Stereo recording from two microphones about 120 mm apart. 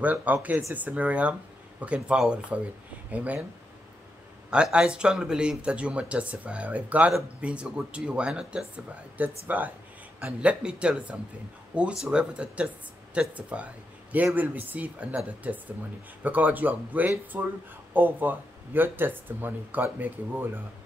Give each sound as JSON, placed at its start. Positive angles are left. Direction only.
{"t": 0.0, "sound": "speech", "side_deg": -15}
{"t": 4.5, "sound": "speech", "side_deg": -10}